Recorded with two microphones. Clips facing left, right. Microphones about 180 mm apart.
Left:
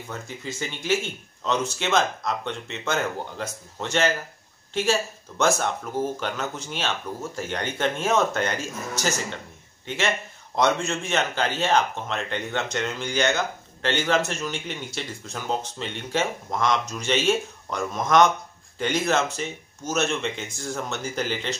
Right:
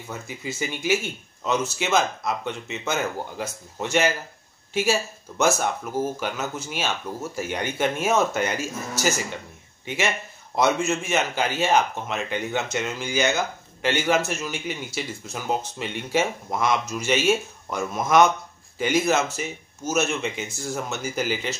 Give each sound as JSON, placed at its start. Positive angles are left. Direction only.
{"t": 0.1, "sound": "a man's voice", "side_deg": -5}